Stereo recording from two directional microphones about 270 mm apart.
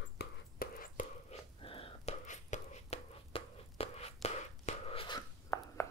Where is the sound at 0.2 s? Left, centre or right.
Left.